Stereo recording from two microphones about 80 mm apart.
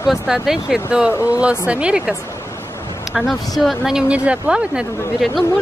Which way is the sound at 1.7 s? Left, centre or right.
Centre.